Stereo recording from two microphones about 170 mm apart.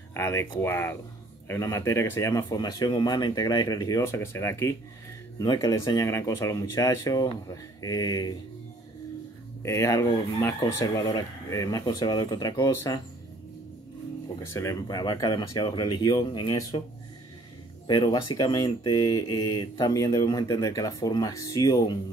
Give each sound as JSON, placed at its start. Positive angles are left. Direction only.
{"t": 0.1, "sound": "speech", "side_deg": 15}
{"t": 9.6, "sound": "speech", "side_deg": 15}
{"t": 14.5, "sound": "speech", "side_deg": 20}
{"t": 17.8, "sound": "speech", "side_deg": 25}